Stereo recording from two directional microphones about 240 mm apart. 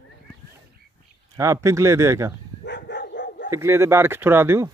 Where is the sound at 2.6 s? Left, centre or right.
Left.